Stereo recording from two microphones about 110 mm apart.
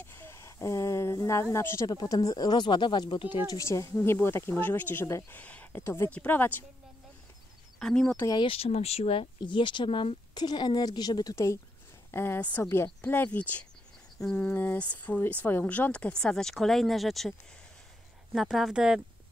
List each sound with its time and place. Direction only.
0.0 s a sound: 25° left (ahead or behind)
1.9 s speech: 35° left (ahead or behind)
3.5 s speech: 30° left (ahead or behind)
5.4 s speech: 15° left (ahead or behind)
7.8 s speech: 5° left (ahead or behind)
8.5 s speech: 65° left (ahead or behind)
10.3 s speech: 40° left (ahead or behind); by 17.3 s centre (ahead or behind)
18.3 s speech: centre (ahead or behind)